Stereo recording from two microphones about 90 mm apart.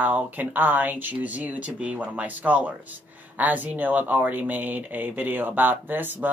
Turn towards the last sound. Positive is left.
turn(degrees=-20)  # may be behind; listen again after turning